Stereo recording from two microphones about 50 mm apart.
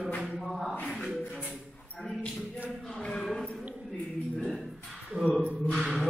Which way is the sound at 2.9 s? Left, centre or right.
Centre.